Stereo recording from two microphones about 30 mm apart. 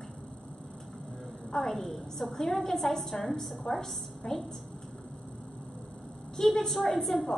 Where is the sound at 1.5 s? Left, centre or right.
Centre.